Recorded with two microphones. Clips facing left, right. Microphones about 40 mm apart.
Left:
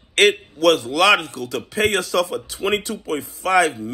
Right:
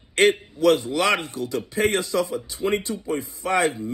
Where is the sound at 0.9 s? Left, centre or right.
Left.